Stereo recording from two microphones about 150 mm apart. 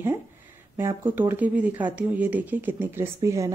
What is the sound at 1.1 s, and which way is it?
A woman's voice, 10° right (ahead or behind).